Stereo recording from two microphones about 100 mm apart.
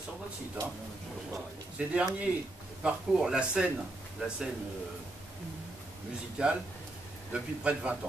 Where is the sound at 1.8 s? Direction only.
10° right (ahead or behind).